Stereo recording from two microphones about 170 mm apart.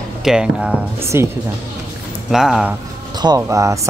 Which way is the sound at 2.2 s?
Centre (ahead or behind).